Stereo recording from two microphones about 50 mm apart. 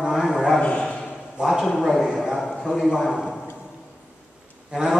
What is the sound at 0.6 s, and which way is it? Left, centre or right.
Bow-wow, left.